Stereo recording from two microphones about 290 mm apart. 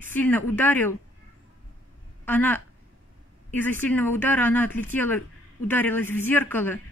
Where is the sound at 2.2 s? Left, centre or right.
Centre.